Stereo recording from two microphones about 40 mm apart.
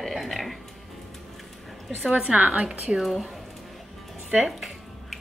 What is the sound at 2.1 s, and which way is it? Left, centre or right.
Speech, right.